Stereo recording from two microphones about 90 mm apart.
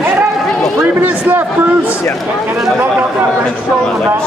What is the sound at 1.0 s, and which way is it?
Speech, 20° right (ahead or behind).